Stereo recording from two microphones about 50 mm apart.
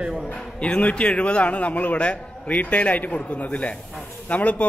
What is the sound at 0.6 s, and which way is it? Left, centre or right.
A man's voice, left.